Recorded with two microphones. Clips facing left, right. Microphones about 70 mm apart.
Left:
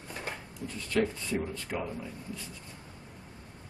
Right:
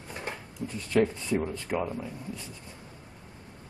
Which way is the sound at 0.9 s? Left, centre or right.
Centre.